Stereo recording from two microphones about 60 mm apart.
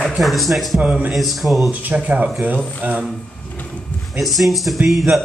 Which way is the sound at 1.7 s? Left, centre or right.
Right.